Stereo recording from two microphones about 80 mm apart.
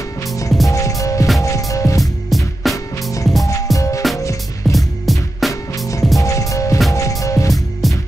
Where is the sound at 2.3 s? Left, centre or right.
Centre.